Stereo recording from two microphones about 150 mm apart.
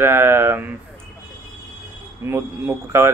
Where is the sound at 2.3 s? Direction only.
15° right (ahead or behind).